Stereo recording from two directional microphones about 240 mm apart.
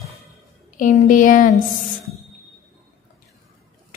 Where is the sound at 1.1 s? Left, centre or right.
Left.